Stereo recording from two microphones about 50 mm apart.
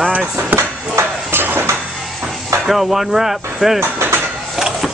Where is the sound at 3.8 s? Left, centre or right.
Right.